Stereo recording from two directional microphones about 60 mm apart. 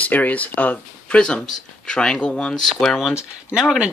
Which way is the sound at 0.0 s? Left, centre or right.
Left.